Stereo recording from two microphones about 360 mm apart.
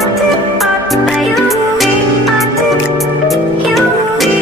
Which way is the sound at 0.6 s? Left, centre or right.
Centre.